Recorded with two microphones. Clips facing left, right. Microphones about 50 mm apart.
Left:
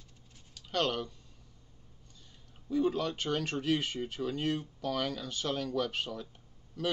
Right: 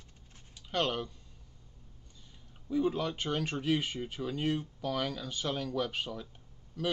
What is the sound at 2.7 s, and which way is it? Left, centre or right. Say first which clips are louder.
A man's voice: left 1 dB; centre.